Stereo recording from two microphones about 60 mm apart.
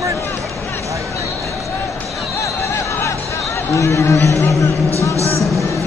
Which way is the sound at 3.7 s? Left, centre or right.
Left.